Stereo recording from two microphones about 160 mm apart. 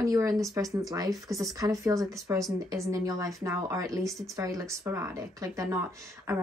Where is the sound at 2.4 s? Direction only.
Centre (ahead or behind).